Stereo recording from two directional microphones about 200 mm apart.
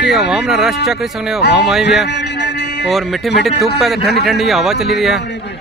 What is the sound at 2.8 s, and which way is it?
Speech, centre (ahead or behind).